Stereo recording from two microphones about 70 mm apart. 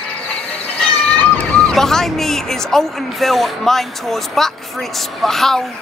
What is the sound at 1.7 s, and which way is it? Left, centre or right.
Speech, centre.